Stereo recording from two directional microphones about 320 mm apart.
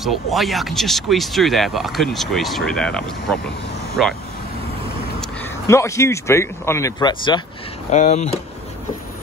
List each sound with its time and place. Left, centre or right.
0.0 s speech: centre
5.7 s speech: centre